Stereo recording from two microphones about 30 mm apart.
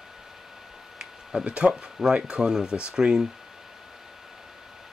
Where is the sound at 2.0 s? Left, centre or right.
Centre.